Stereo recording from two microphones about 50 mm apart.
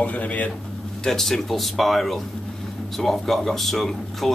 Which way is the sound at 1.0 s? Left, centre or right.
Centre.